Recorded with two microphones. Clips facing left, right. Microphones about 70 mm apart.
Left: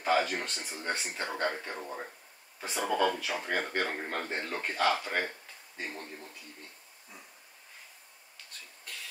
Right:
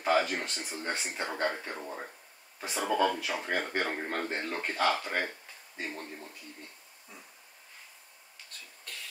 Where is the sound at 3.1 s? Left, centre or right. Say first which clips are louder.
Even; centre.